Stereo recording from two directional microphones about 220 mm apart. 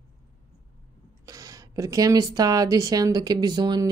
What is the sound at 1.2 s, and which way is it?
Speech, 15° right (ahead or behind).